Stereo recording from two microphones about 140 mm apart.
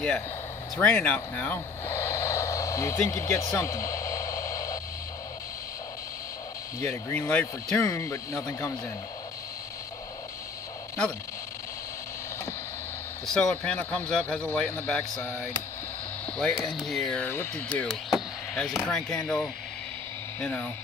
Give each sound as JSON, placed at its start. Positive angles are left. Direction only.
{"t": 0.7, "sound": "speech", "side_deg": 10}
{"t": 6.8, "sound": "speech", "side_deg": 15}
{"t": 13.3, "sound": "speech", "side_deg": 5}
{"t": 17.2, "sound": "speech", "side_deg": 15}